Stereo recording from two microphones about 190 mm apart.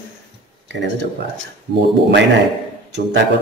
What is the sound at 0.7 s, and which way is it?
Speech, 70° right (ahead or behind).